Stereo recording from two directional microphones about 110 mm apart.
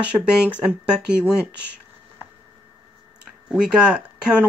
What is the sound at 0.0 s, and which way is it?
Speech, 10° right (ahead or behind).